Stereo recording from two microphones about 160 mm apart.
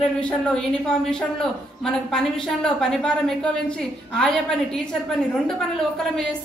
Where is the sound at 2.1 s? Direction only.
5° left (ahead or behind).